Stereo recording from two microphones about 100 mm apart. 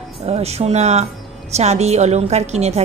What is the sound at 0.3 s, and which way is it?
A woman's voice, 90° right.